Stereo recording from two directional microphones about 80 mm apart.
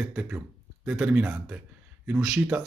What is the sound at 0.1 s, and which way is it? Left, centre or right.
Speech, centre.